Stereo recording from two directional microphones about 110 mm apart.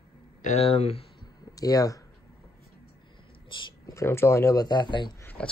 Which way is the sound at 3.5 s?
50° left (ahead or behind).